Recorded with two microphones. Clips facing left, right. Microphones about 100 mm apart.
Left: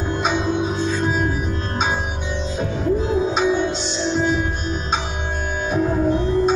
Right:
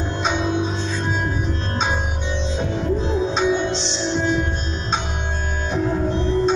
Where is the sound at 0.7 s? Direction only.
10° left (ahead or behind).